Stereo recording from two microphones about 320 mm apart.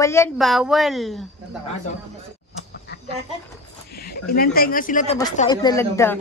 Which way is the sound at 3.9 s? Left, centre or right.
Left.